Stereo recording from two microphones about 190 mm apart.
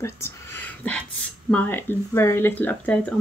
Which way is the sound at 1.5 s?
10° left (ahead or behind).